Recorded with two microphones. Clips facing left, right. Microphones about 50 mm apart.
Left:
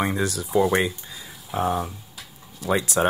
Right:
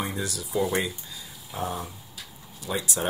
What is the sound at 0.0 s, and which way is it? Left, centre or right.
Speech, left.